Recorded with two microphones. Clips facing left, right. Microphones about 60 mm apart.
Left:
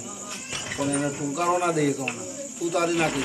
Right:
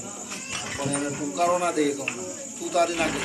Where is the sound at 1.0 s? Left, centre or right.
Centre.